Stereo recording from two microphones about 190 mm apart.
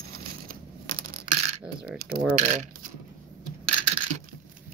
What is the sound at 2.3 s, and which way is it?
Speech, 40° right (ahead or behind).